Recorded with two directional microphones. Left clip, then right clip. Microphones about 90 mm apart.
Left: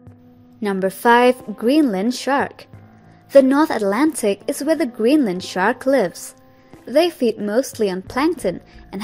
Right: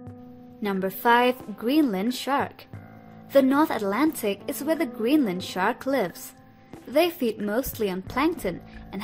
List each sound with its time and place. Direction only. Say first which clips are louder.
0.7 s a woman's voice: left 6 dB; 35° left (ahead or behind)
6.9 s a woman's voice: left 6 dB; 20° left (ahead or behind)